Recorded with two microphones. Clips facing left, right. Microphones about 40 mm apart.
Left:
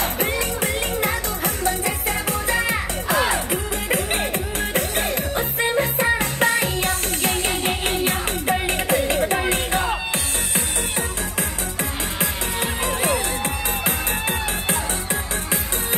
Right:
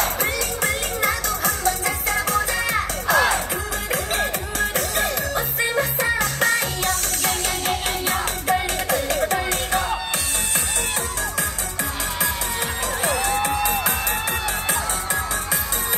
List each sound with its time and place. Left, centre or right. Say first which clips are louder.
0.0 s music: even; left